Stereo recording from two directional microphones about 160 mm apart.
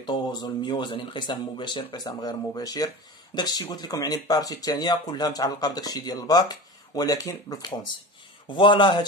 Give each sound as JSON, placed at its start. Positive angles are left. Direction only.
{"t": 0.0, "sound": "speech", "side_deg": 25}